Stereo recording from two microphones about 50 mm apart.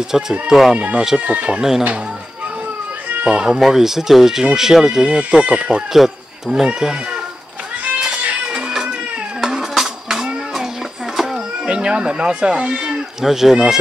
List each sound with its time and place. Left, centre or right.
0.1 s speech: centre
0.7 s speech: right
1.6 s speech: centre
3.3 s speech: centre
5.4 s speech: right
5.9 s speech: centre
8.5 s cat: centre
9.4 s a sound: centre
11.6 s speech: right